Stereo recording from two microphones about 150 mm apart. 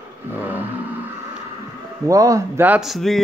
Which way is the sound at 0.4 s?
10° right (ahead or behind).